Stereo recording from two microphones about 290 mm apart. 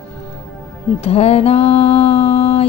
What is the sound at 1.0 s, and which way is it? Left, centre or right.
Music, left.